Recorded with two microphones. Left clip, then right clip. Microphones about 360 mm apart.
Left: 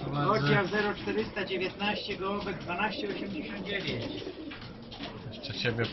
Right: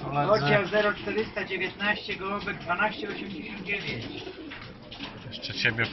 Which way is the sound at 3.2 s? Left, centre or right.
Centre.